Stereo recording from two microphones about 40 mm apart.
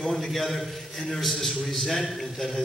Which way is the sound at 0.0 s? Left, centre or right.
Centre.